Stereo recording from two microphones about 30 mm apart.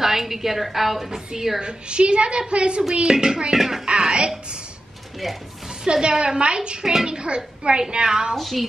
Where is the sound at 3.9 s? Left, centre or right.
Right.